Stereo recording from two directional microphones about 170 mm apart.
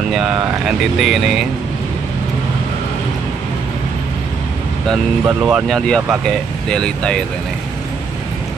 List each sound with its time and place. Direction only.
0.1 s speech: 5° right (ahead or behind)
5.2 s speech: 5° right (ahead or behind)